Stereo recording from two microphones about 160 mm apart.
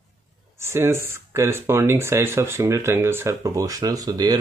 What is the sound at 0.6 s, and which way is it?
Speech, 15° right (ahead or behind).